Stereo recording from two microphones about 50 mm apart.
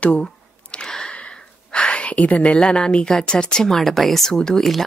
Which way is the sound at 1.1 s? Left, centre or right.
Left.